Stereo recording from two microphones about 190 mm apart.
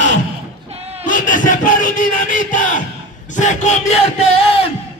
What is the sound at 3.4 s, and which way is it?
Yell, 40° left (ahead or behind).